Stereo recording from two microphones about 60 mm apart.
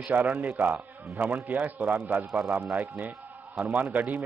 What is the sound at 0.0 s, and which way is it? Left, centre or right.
A man's voice, right.